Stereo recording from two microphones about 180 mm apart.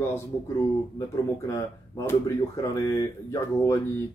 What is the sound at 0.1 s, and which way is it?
Speech, 15° left (ahead or behind).